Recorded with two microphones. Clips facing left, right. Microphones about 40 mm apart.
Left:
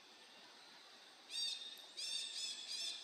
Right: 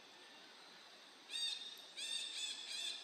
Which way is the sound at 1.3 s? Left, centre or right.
Right.